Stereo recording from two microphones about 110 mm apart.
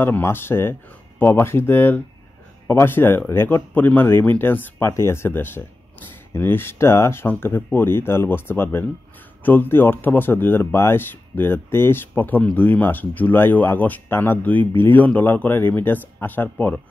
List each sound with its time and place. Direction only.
0.0 s speech: 20° left (ahead or behind)